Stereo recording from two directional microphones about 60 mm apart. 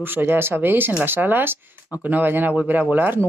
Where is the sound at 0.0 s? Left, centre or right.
Right.